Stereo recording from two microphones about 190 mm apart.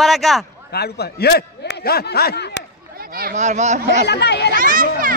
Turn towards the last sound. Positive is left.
turn(degrees=-45)  # may be behind; listen again after turning